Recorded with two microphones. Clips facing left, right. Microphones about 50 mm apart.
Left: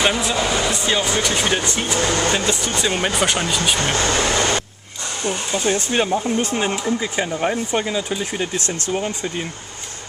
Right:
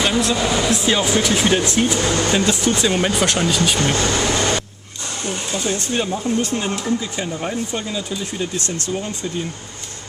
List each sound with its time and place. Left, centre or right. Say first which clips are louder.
0.0 s speech: right 1 dB; centre
0.6 s speech: right 2 dB; centre
2.0 s speech: even; left
2.3 s speech: right 3 dB; centre
3.9 s speech: even; centre
5.3 s speech: left 1 dB; centre
5.7 s speech: left 4 dB; left
8.6 s speech: even; right
8.9 s speech: left 2 dB; left